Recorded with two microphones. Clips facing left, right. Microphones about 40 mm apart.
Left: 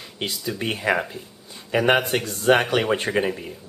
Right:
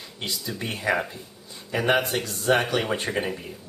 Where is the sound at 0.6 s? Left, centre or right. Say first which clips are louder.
Left 3 dB; left.